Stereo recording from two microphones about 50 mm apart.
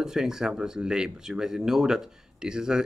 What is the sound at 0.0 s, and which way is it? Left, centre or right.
Speech, centre.